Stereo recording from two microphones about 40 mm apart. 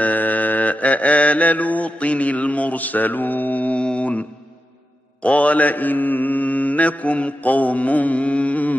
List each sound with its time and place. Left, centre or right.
0.0 s mantra: left
3.7 s mantra: left
5.2 s mantra: left